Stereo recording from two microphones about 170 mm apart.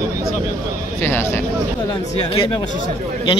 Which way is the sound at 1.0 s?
15° left (ahead or behind).